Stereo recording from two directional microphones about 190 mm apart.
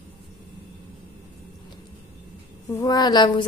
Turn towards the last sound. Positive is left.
turn(degrees=25)  # may be behind; listen again after turning